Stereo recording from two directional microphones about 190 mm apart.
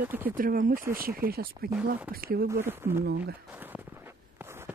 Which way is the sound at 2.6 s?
10° right (ahead or behind).